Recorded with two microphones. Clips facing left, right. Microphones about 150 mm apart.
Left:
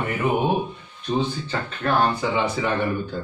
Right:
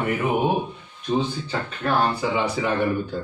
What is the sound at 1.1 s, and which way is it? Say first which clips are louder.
Speech: even; 5° right (ahead or behind).